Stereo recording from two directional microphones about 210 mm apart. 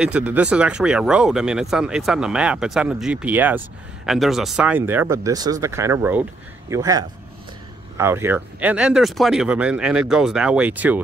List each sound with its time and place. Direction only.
0.0 s speech: 5° right (ahead or behind)